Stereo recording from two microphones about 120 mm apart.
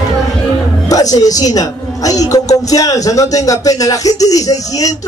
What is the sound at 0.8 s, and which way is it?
A man's voice, 30° left (ahead or behind).